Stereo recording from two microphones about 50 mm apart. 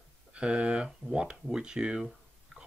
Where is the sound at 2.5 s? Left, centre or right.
Centre.